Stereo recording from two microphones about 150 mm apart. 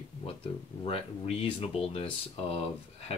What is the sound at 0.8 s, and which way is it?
Speech, 40° left (ahead or behind).